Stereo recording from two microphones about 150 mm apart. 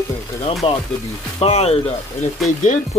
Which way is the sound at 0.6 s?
40° left (ahead or behind).